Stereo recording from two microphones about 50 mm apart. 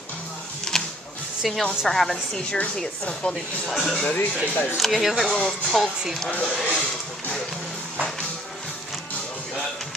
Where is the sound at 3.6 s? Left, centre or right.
Centre.